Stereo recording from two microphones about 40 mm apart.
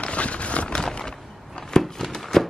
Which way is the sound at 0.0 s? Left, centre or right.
Left.